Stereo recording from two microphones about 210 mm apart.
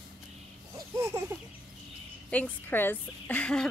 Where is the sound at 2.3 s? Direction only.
10° left (ahead or behind).